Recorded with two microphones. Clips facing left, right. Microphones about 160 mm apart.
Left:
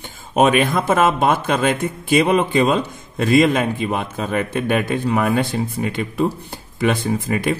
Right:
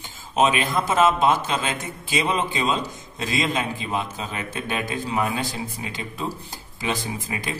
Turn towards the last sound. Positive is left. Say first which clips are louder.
# left 10 dB
turn(degrees=60)  # may be behind; listen again after turning